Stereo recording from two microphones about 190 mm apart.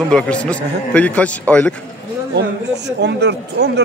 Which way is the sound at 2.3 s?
65° right (ahead or behind).